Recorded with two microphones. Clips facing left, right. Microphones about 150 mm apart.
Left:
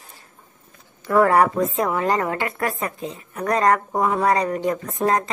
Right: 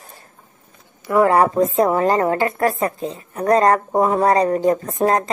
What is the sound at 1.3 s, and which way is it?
A woman's voice, 30° right (ahead or behind).